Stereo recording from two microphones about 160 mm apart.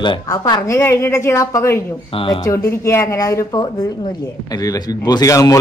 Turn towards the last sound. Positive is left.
turn(degrees=20)  # may be behind; listen again after turning